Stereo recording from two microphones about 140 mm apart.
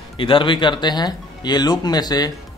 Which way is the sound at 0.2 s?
35° left (ahead or behind).